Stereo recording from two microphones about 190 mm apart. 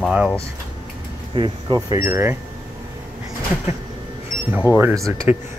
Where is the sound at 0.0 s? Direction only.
5° right (ahead or behind).